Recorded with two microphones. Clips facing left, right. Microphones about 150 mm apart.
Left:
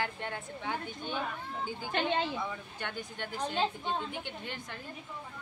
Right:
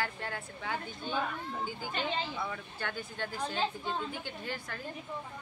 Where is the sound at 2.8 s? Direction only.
20° left (ahead or behind).